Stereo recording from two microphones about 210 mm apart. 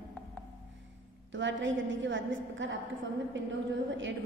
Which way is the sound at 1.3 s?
60° right (ahead or behind).